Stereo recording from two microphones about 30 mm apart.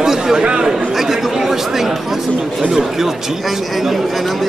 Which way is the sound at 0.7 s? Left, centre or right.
Centre.